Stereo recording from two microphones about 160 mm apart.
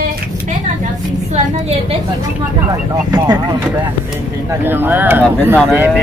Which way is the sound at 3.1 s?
25° right (ahead or behind).